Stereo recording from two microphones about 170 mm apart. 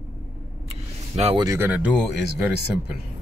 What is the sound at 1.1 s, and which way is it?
Speech, 40° right (ahead or behind).